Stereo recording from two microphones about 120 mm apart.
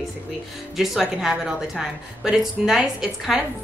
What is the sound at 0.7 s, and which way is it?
A woman's voice, 5° right (ahead or behind).